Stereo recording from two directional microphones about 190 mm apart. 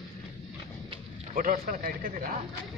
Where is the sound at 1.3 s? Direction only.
50° right (ahead or behind).